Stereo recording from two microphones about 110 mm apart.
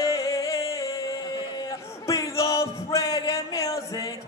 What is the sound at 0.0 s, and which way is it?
Music, 30° left (ahead or behind).